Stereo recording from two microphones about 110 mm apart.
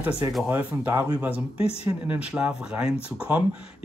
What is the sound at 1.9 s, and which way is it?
Speech, 15° right (ahead or behind).